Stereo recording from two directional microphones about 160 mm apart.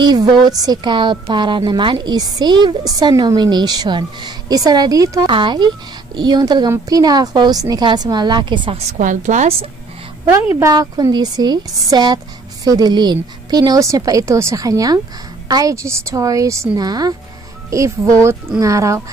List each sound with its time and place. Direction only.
0.0 s a woman's voice: 25° right (ahead or behind); by 9.7 s 45° right (ahead or behind)
10.2 s a woman's voice: 10° right (ahead or behind)